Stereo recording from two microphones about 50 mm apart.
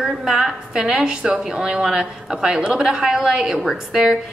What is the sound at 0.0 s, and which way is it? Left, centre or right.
A woman's voice, centre.